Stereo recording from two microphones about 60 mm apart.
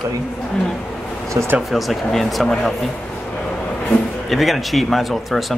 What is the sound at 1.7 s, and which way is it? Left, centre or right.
Speech, centre.